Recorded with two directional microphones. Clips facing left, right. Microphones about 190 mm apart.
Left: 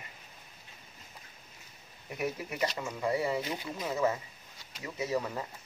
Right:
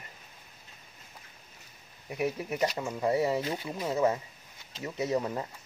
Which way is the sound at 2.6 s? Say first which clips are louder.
Right 3 dB; 10° right (ahead or behind).